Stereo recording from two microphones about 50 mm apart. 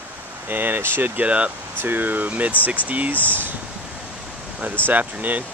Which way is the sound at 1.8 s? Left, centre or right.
Right.